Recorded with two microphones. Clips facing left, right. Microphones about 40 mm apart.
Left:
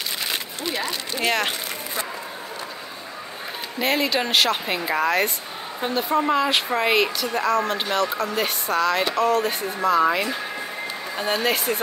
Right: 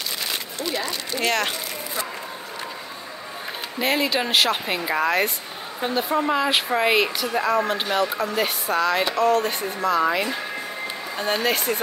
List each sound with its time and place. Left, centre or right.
0.3 s crumpling: left
0.8 s speech: centre
3.8 s speech: centre